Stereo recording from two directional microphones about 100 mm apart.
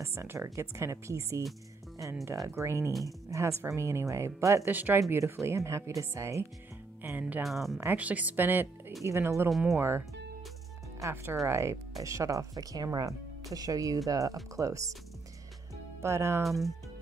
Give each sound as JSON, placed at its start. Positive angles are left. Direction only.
{"t": 0.0, "sound": "speech", "side_deg": -25}
{"t": 4.6, "sound": "speech", "side_deg": -20}
{"t": 7.0, "sound": "speech", "side_deg": -20}
{"t": 7.4, "sound": "speech", "side_deg": 0}
{"t": 7.8, "sound": "speech", "side_deg": -15}
{"t": 9.0, "sound": "speech", "side_deg": -30}
{"t": 9.5, "sound": "speech", "side_deg": 0}
{"t": 9.8, "sound": "speech", "side_deg": -25}
{"t": 16.0, "sound": "speech", "side_deg": -25}
{"t": 16.4, "sound": "speech", "side_deg": 0}